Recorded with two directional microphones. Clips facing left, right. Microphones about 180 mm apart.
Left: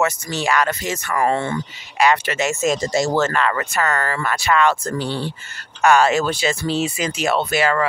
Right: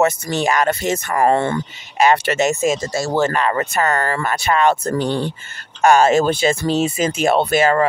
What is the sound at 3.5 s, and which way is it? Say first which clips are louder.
Speech: right 3 dB; 35° right (ahead or behind).